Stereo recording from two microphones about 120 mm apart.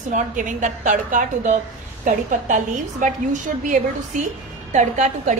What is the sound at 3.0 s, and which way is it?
A woman's voice, 90° right.